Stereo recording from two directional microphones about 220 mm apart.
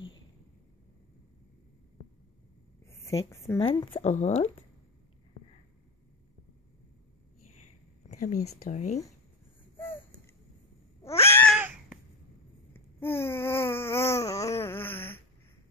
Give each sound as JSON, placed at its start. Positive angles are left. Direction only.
{"t": 3.1, "sound": "a woman's voice", "side_deg": 15}
{"t": 8.1, "sound": "a sound", "side_deg": 35}
{"t": 8.6, "sound": "speech", "side_deg": 35}
{"t": 11.1, "sound": "cat", "side_deg": 10}
{"t": 11.5, "sound": "a sound", "side_deg": -5}
{"t": 12.7, "sound": "babbling", "side_deg": 10}